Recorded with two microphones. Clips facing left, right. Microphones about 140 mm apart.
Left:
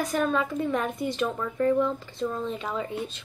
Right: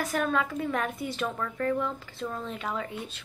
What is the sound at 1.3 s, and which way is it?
Speech, 10° left (ahead or behind).